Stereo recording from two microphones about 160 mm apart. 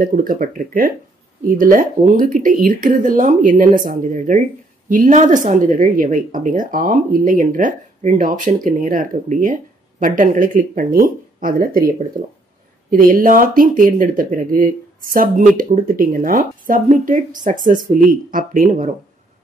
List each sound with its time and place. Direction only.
0.0 s speech: 60° right (ahead or behind)
13.0 s speech: 60° right (ahead or behind)